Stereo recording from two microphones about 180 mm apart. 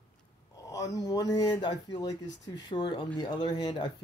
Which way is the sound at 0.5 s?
20° left (ahead or behind).